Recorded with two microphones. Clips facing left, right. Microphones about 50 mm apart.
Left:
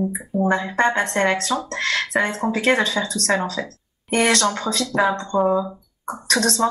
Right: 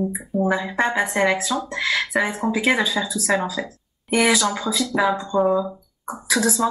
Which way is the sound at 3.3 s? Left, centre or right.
Centre.